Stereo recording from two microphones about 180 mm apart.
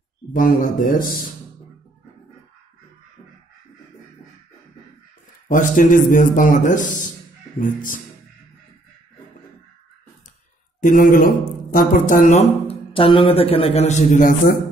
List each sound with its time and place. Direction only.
0.3 s a man's voice: 50° left (ahead or behind)
5.5 s a man's voice: 45° left (ahead or behind)
10.8 s speech: 45° left (ahead or behind)